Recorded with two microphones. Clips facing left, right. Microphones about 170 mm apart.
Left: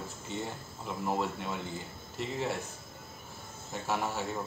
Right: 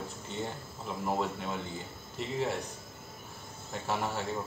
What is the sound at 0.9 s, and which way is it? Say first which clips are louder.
Speech: even; centre (ahead or behind).